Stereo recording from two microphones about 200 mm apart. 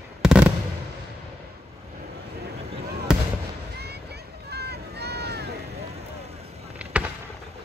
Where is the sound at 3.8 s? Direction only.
55° right (ahead or behind).